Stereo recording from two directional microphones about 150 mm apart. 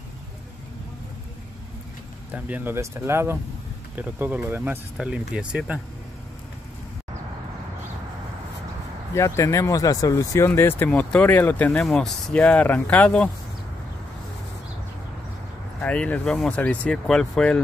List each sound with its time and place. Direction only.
2.3 s speech: 10° right (ahead or behind)
9.1 s speech: 20° left (ahead or behind)
15.8 s speech: 10° left (ahead or behind)